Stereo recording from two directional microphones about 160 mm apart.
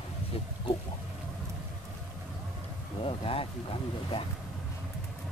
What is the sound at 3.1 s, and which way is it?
Speech, 35° left (ahead or behind).